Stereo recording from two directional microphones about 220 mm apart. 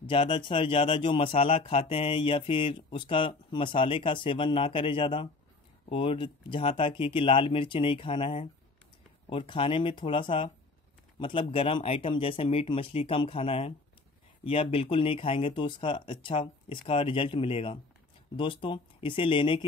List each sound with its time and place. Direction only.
0.0 s speech: 25° left (ahead or behind)